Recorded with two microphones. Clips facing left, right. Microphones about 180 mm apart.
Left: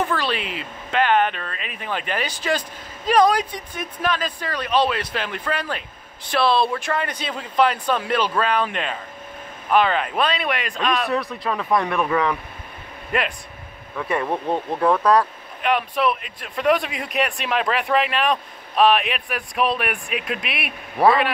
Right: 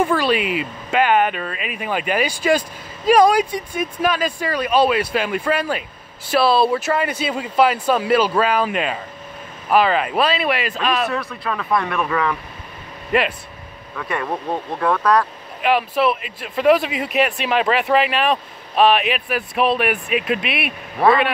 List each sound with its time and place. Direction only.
0.0 s a man's voice: 10° right (ahead or behind)
11.1 s speech: 35° left (ahead or behind)
13.1 s a man's voice: 5° right (ahead or behind)
13.9 s speech: 25° left (ahead or behind)
15.6 s a man's voice: 5° right (ahead or behind)